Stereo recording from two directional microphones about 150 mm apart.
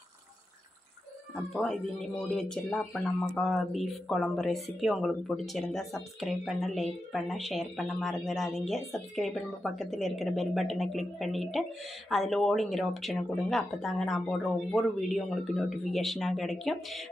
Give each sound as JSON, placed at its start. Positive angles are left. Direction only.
{"t": 1.3, "sound": "speech", "side_deg": 0}